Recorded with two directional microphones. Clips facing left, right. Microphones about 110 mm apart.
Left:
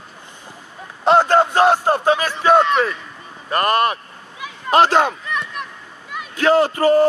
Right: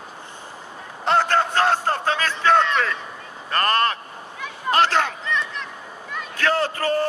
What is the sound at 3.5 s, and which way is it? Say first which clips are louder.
Speech: left 4 dB; 15° left (ahead or behind).